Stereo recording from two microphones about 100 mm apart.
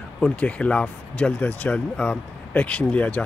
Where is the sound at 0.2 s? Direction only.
10° left (ahead or behind).